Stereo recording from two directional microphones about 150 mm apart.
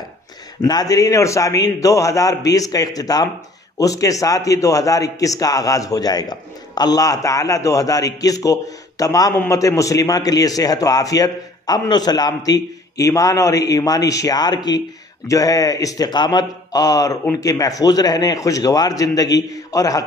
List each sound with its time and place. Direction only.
0.6 s a man's voice: 25° left (ahead or behind)